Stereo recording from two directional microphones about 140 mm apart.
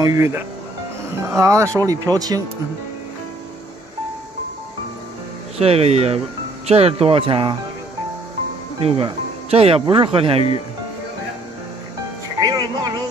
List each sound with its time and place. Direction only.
0.0 s speech: 20° right (ahead or behind)
5.6 s speech: 45° right (ahead or behind)
8.8 s speech: 45° right (ahead or behind)
12.4 s music: 25° right (ahead or behind)